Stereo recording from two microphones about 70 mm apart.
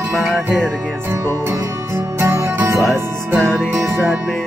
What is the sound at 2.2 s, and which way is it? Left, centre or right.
Music, right.